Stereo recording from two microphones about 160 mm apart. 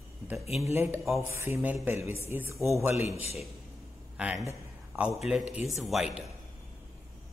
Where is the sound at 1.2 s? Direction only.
15° right (ahead or behind).